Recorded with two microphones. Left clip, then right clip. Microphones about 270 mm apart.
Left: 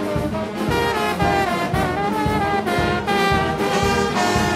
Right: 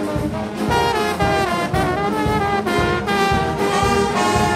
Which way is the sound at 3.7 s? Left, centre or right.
Right.